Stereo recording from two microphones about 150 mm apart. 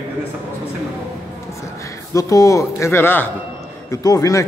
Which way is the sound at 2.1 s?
20° left (ahead or behind).